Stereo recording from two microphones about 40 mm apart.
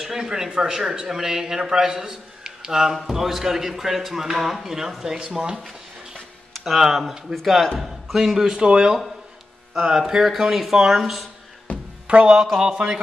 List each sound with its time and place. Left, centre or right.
0.0 s speech: centre
6.6 s a man's voice: centre
12.1 s speech: right
12.5 s speech: centre